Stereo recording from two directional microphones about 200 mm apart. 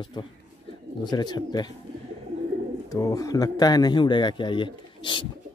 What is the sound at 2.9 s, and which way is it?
Speech, 15° left (ahead or behind).